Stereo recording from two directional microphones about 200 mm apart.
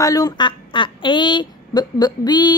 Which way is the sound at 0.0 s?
20° left (ahead or behind).